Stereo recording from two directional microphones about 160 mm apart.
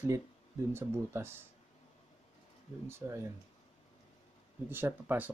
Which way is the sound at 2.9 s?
20° right (ahead or behind).